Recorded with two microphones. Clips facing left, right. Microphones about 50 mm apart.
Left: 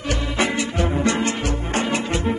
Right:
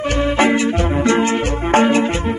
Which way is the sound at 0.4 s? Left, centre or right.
Right.